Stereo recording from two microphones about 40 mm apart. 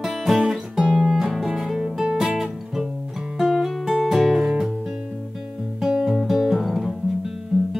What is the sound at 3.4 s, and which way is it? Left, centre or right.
Music, centre.